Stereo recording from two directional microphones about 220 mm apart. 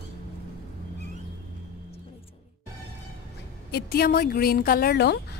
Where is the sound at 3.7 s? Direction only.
45° left (ahead or behind).